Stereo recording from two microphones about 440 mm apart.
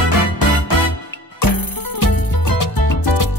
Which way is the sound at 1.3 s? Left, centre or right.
Left.